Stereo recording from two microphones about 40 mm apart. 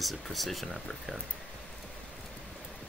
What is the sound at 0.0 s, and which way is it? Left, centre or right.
Speech, centre.